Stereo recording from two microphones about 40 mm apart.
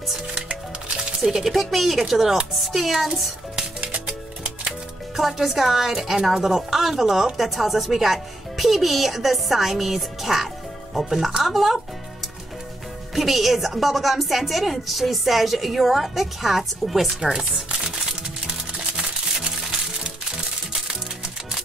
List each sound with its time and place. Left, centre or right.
1.2 s speech: centre
3.9 s music: right
5.1 s a woman's voice: centre
13.1 s a woman's voice: centre
19.6 s music: centre